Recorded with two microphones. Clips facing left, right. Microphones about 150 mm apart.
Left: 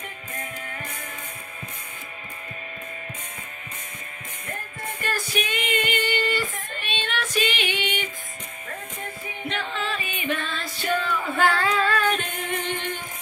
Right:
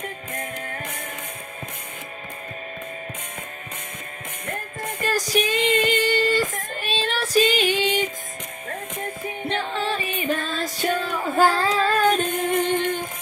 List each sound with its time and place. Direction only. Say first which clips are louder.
5.0 s child singing: right 6 dB; 40° right (ahead or behind)
9.5 s music: right 4 dB; 30° right (ahead or behind)